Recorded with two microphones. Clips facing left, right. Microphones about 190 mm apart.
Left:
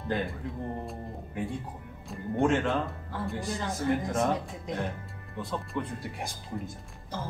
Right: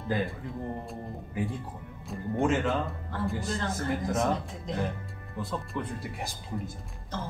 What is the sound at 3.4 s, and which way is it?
Speech, 15° left (ahead or behind).